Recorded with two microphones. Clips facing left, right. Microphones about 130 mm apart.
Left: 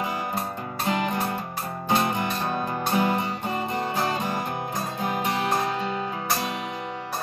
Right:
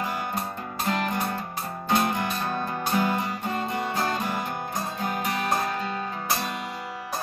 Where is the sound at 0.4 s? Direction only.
5° left (ahead or behind).